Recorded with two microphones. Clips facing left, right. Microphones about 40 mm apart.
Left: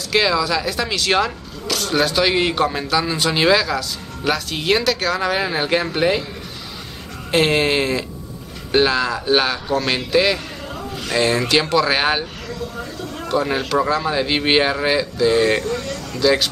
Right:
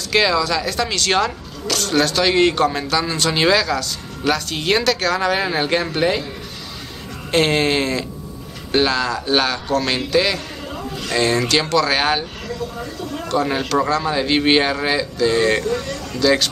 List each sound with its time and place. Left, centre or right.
0.1 s speech: centre
7.2 s a man's voice: centre
13.3 s speech: centre
15.6 s speech: right
16.2 s speech: centre